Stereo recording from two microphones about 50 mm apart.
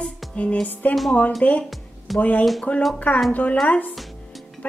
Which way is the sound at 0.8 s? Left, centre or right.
Left.